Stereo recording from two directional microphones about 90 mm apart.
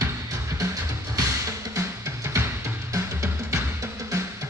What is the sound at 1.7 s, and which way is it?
Music, 35° right (ahead or behind).